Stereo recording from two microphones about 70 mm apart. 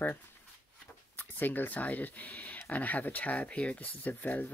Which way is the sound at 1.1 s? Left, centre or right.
Left.